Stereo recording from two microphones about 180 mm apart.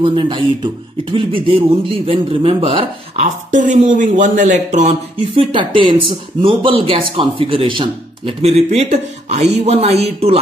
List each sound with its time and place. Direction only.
0.0 s speech: 30° right (ahead or behind)
3.5 s speech: 45° right (ahead or behind)